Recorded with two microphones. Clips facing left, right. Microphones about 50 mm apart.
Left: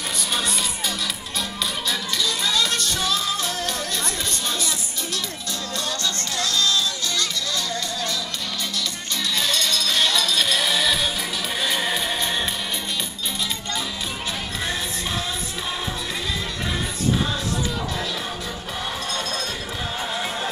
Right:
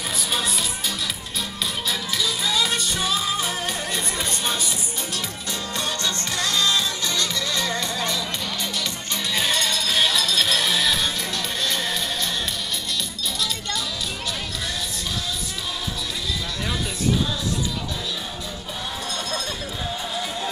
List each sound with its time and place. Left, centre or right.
0.3 s music: centre
5.9 s music: right
9.3 s music: centre
11.6 s music: centre